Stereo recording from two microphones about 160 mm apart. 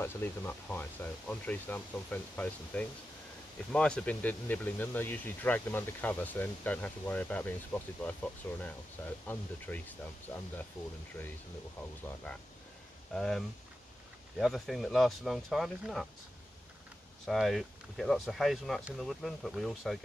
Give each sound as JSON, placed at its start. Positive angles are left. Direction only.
{"t": 0.0, "sound": "speech", "side_deg": 15}
{"t": 13.1, "sound": "speech", "side_deg": 5}
{"t": 14.4, "sound": "speech", "side_deg": 0}
{"t": 17.3, "sound": "speech", "side_deg": 0}